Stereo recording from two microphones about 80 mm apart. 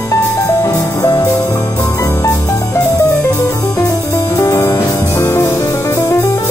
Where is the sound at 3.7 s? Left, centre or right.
Left.